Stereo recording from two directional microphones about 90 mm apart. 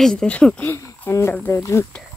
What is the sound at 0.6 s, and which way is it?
Speech, 30° left (ahead or behind).